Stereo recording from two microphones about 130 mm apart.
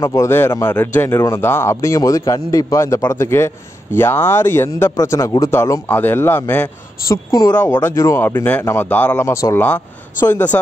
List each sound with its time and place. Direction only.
0.0 s speech: 25° left (ahead or behind)
7.1 s speech: 25° left (ahead or behind)